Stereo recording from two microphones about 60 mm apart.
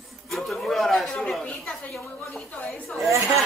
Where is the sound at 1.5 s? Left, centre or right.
Left.